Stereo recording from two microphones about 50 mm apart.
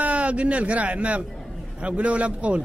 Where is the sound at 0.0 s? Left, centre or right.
Right.